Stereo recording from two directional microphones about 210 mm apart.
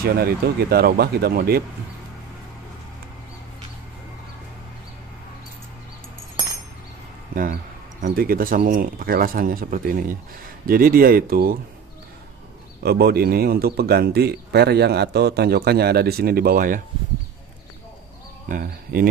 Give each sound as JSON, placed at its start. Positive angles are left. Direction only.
{"t": 0.1, "sound": "speech", "side_deg": -50}
{"t": 7.3, "sound": "speech", "side_deg": -45}
{"t": 12.8, "sound": "speech", "side_deg": -50}
{"t": 18.5, "sound": "speech", "side_deg": -45}